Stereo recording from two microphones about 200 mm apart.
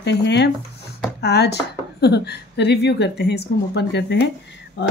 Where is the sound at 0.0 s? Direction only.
60° left (ahead or behind).